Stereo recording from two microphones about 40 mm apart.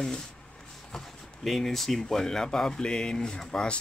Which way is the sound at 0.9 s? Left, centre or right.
Centre.